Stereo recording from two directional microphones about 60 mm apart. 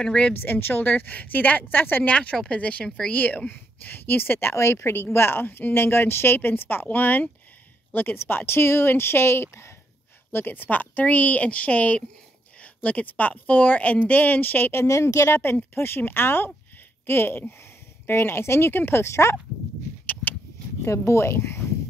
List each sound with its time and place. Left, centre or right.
0.0 s speech: centre
0.3 s a woman's voice: left
2.0 s speech: left
4.6 s speech: left
4.9 s a woman's voice: left
10.3 s speech: left
14.9 s speech: left
15.5 s a woman's voice: left
20.1 s a sound: left
20.8 s speech: left